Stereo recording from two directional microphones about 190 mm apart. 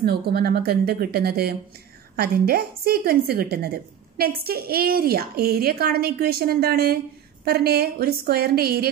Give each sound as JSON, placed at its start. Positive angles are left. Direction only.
{"t": 0.0, "sound": "a woman's voice", "side_deg": -55}